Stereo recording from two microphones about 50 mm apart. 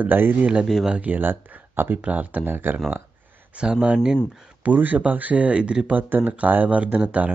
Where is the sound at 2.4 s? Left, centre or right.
Right.